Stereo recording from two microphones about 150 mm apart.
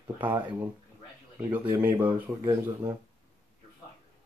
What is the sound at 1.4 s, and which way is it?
Speech, 15° right (ahead or behind).